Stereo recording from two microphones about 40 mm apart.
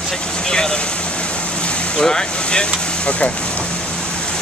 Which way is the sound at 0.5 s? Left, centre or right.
Centre.